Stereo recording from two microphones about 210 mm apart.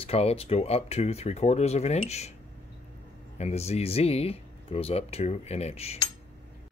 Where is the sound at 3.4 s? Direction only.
30° left (ahead or behind).